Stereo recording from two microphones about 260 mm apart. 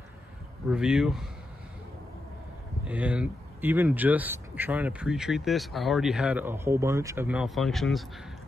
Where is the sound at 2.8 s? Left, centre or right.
Centre.